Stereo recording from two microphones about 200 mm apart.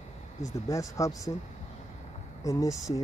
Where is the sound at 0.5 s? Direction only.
15° left (ahead or behind).